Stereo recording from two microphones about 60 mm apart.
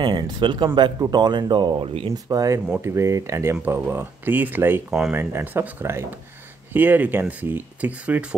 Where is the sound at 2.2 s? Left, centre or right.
Right.